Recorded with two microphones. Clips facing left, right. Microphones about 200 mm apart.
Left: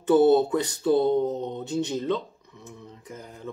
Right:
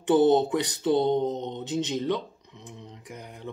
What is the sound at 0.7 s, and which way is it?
Speech, 15° right (ahead or behind).